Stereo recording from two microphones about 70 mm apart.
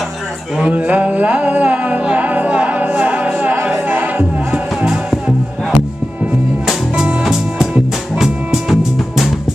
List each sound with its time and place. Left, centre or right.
0.6 s music: centre
8.2 s music: centre